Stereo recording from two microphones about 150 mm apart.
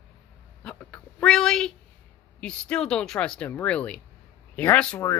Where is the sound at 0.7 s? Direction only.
5° left (ahead or behind).